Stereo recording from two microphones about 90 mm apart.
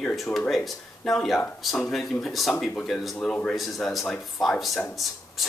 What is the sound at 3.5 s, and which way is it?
Speech, centre (ahead or behind).